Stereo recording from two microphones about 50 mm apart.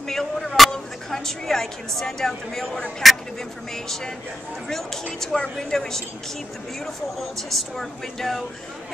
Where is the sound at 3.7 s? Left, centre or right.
Centre.